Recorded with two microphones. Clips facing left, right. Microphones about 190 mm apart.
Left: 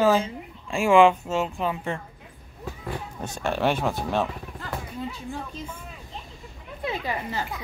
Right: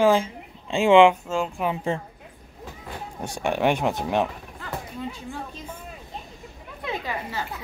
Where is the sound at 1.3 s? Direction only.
5° left (ahead or behind).